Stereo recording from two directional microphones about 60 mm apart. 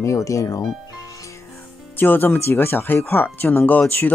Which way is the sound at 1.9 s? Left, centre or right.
Left.